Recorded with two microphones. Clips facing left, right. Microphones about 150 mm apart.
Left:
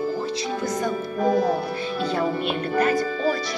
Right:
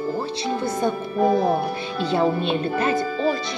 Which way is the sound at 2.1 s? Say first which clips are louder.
Right 5 dB; 25° right (ahead or behind).